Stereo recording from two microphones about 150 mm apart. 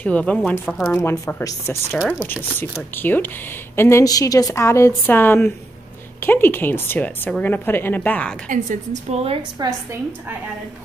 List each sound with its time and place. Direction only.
0.0 s a woman's voice: 10° left (ahead or behind)
8.5 s a woman's voice: 55° right (ahead or behind)